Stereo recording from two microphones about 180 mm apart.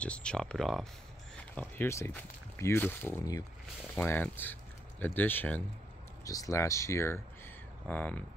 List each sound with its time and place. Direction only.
0.0 s speech: 5° left (ahead or behind)